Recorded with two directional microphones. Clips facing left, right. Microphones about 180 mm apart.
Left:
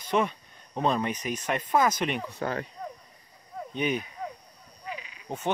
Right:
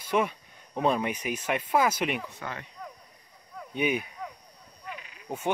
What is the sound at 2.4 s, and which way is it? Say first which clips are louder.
Speech: left 8 dB; 40° left (ahead or behind).